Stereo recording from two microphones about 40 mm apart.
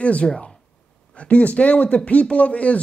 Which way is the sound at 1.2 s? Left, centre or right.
Left.